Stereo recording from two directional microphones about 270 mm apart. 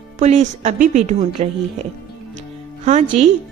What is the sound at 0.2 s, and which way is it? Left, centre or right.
A woman's voice, right.